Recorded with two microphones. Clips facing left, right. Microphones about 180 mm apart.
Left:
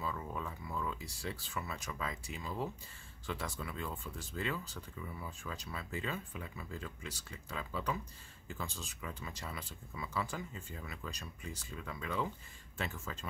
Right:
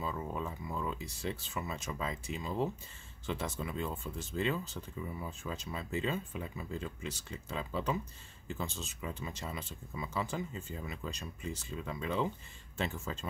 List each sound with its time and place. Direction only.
0.0 s speech: 25° right (ahead or behind)